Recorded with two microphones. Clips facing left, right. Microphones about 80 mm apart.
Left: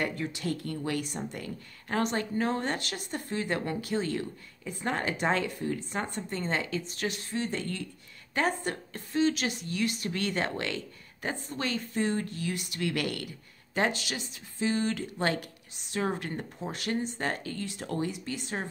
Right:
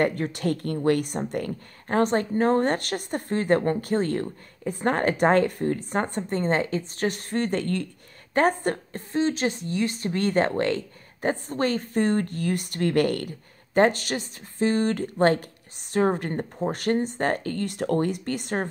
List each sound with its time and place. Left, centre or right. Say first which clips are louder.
0.0 s a woman's voice: right 8 dB; right
1.9 s a woman's voice: right 7 dB; right
8.4 s a woman's voice: right 7 dB; right